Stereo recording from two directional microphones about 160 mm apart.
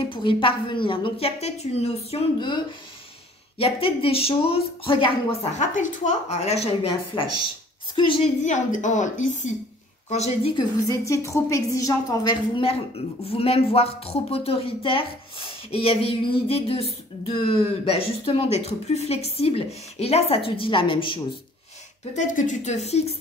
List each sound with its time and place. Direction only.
0.1 s a woman's voice: 30° left (ahead or behind)
5.6 s a woman's voice: 50° left (ahead or behind); by 8.2 s 30° left (ahead or behind)
8.4 s a woman's voice: 50° left (ahead or behind)
10.5 s a woman's voice: 25° left (ahead or behind)
22.1 s a woman's voice: 50° left (ahead or behind)